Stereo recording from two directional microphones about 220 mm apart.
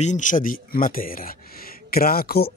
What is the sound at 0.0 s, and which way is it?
Speech, 35° left (ahead or behind).